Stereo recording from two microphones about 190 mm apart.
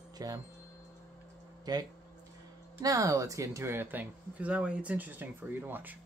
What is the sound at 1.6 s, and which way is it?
Speech, 20° right (ahead or behind).